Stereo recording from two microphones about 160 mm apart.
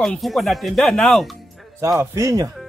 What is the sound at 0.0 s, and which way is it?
Speech, centre (ahead or behind).